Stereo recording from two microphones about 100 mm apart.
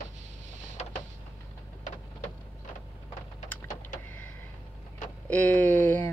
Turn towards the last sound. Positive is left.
turn(degrees=20)  # may be behind; listen again after turning